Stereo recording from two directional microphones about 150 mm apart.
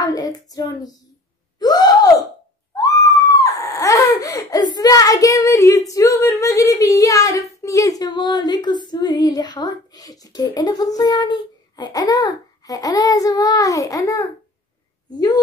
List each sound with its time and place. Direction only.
0.0 s female singing: 25° left (ahead or behind)
1.6 s gasp: 25° left (ahead or behind)
2.7 s screaming: 25° left (ahead or behind)
7.5 s female singing: 20° left (ahead or behind)